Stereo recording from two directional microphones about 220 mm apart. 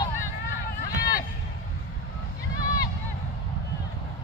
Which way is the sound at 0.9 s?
40° left (ahead or behind).